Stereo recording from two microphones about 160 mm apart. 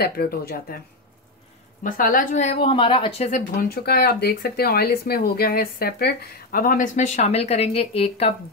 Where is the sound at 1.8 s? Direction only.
60° left (ahead or behind); by 3.4 s 45° left (ahead or behind).